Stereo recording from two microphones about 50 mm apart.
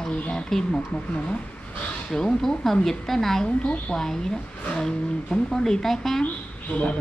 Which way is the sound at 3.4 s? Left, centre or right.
Left.